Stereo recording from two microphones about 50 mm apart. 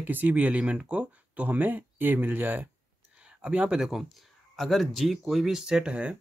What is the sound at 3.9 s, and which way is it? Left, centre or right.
Speech, centre.